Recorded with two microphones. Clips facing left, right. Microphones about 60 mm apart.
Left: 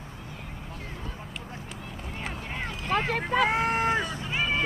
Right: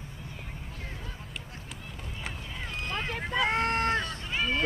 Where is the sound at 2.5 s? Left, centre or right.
Left.